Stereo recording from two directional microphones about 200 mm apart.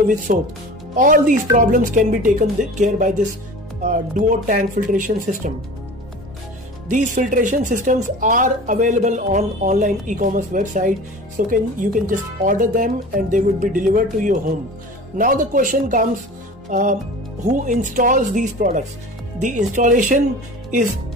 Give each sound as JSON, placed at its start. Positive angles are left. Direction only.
{"t": 0.3, "sound": "speech", "side_deg": -45}
{"t": 6.9, "sound": "speech", "side_deg": -40}